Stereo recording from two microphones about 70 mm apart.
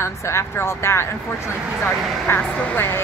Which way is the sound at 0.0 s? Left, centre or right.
Left.